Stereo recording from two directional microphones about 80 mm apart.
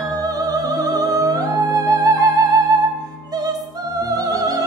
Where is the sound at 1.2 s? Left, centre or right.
Right.